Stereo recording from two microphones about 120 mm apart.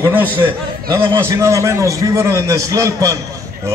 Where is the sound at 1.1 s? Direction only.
20° right (ahead or behind).